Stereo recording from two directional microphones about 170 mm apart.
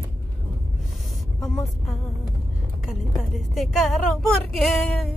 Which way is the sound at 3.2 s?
Centre (ahead or behind).